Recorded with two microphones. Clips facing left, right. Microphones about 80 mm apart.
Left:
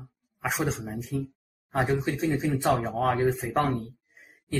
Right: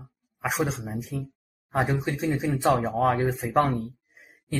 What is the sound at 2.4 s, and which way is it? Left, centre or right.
Speech, centre.